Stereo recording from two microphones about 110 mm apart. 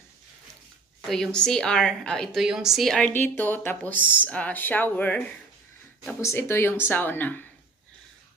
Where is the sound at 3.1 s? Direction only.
20° left (ahead or behind).